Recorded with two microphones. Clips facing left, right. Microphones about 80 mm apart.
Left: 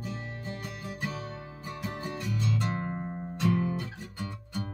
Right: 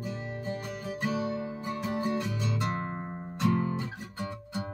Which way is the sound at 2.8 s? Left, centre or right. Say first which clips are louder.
Left 1 dB; right.